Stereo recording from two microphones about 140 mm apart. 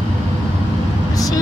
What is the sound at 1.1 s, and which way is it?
Vehicle, 25° left (ahead or behind).